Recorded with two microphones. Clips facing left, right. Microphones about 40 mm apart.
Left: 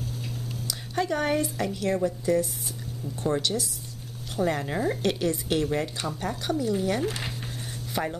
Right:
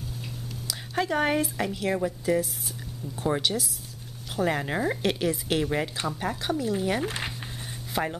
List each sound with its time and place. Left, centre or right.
0.7 s a sound: centre
1.1 s speech: centre
4.4 s speech: centre